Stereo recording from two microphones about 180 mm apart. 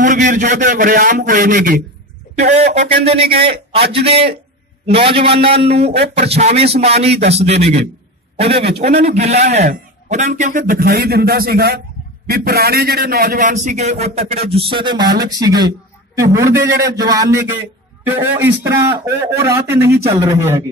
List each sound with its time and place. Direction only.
0.0 s a sound: 45° right (ahead or behind)
0.6 s a man's voice: 50° right (ahead or behind)
2.3 s a man's voice: 40° right (ahead or behind)
5.9 s speech: 70° right (ahead or behind)
6.1 s a man's voice: 35° right (ahead or behind)
10.6 s a man's voice: 60° right (ahead or behind)
13.5 s a man's voice: 40° right (ahead or behind); by 20.5 s 15° right (ahead or behind)